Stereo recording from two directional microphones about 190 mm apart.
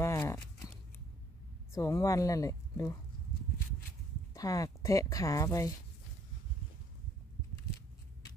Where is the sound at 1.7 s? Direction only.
15° left (ahead or behind).